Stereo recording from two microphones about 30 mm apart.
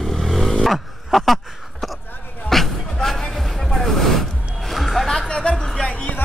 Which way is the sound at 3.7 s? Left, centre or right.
Centre.